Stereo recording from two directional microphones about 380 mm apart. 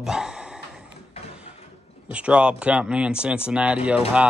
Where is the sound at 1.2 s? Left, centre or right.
Centre.